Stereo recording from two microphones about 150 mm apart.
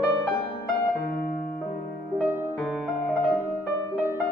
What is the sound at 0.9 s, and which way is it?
Music, 90° left.